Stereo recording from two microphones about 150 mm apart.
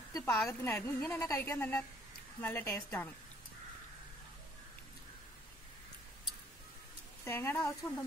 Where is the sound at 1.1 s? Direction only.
20° left (ahead or behind).